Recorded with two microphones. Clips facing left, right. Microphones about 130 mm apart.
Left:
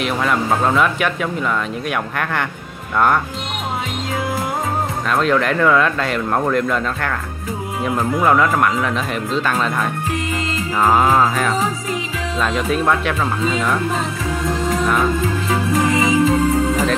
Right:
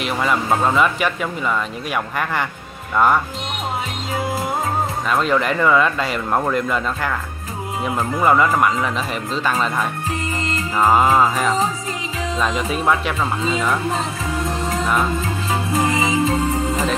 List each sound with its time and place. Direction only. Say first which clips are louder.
0.0 s speech: left 1 dB; centre (ahead or behind)
5.1 s speech: left 2 dB; centre (ahead or behind)
15.7 s music: left 3 dB; 30° right (ahead or behind)